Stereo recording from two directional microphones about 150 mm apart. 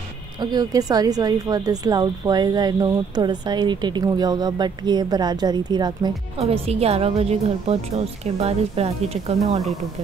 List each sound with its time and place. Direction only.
0.4 s a woman's voice: 25° right (ahead or behind)
6.3 s speech: 40° right (ahead or behind)